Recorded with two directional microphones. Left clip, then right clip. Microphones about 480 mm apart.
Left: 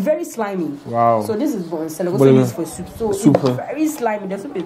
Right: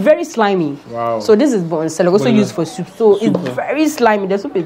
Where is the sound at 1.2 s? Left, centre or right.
Right.